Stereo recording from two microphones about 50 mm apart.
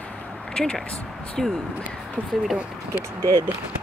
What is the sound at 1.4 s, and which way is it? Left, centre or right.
Speech, centre.